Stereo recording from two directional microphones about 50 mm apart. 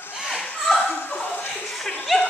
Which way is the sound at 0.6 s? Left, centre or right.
Centre.